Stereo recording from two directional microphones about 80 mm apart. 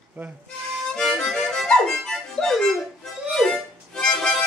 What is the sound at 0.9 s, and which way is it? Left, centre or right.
Harmonica, centre.